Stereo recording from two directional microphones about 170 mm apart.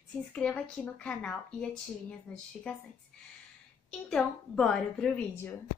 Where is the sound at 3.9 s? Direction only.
5° left (ahead or behind).